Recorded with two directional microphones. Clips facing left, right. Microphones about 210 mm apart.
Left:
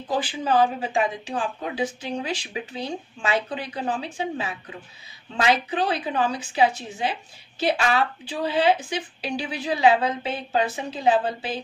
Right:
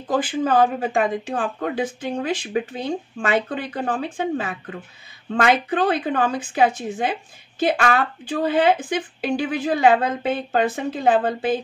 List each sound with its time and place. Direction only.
0.0 s a woman's voice: 50° right (ahead or behind)